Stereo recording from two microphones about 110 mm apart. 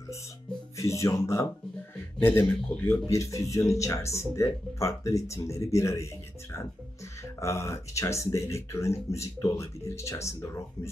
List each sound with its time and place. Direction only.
0.7 s speech: 30° left (ahead or behind)
7.3 s speech: 25° left (ahead or behind)